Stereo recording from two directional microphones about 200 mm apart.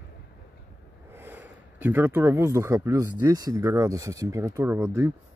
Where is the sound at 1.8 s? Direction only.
10° right (ahead or behind).